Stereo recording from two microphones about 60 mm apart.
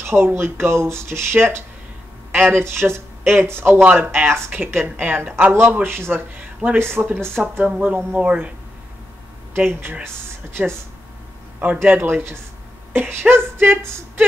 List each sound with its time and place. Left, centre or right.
0.0 s speech: right
3.8 s speech: right
6.3 s speech: right
7.2 s speech: right
7.6 s speech: right
9.6 s speech: right
11.6 s speech: right